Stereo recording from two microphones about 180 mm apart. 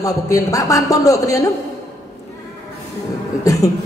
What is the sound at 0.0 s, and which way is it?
A man's voice, 20° left (ahead or behind).